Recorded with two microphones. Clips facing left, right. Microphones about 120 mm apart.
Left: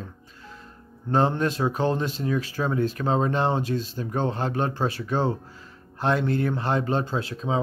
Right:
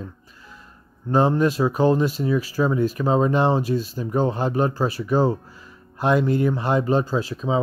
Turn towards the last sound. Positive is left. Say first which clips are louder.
# right 4 dB
turn(degrees=-5)  # may be behind; listen again after turning